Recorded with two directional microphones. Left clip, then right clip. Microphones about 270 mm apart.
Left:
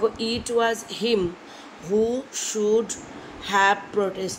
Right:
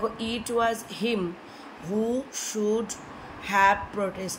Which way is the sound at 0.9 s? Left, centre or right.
Right.